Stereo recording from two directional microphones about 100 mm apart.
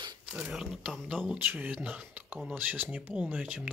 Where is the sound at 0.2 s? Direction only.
10° right (ahead or behind).